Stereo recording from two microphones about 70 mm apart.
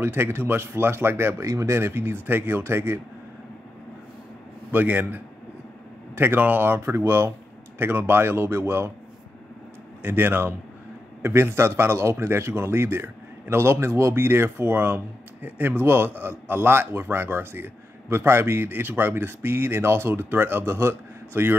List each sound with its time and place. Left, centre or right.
0.0 s speech: right
4.7 s a man's voice: right
10.0 s speech: right